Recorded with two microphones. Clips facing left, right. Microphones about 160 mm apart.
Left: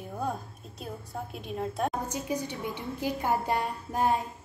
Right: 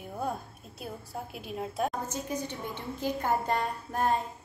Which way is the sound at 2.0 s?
15° left (ahead or behind).